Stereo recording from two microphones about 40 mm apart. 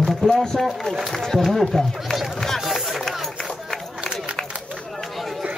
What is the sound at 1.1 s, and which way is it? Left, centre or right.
Run, centre.